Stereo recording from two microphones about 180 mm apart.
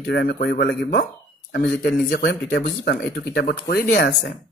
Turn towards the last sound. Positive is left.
turn(degrees=70)  # may be behind; listen again after turning